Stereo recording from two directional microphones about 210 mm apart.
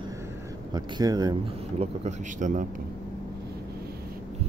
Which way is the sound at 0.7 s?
20° right (ahead or behind).